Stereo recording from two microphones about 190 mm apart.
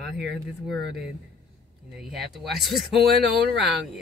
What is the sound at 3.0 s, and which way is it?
Speech, 55° right (ahead or behind).